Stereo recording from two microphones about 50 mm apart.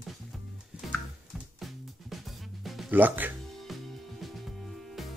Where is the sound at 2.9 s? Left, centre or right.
Right.